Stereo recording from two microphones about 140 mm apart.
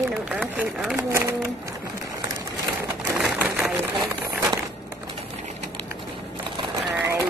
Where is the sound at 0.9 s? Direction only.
20° right (ahead or behind).